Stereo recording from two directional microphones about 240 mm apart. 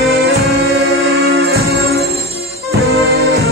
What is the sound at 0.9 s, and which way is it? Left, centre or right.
Music, right.